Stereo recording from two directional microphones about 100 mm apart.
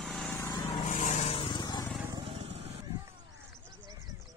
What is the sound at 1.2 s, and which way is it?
Vehicle, 65° left (ahead or behind).